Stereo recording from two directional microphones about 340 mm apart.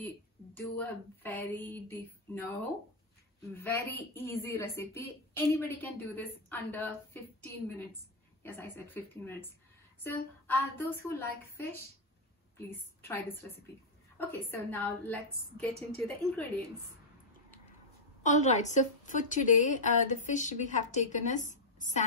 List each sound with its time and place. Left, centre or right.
0.6 s a woman's voice: centre
15.7 s a woman's voice: centre
18.2 s a woman's voice: left